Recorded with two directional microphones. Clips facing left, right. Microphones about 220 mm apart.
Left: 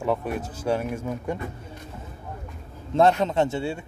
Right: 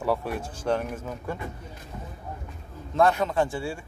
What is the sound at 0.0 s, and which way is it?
Speech, 5° right (ahead or behind).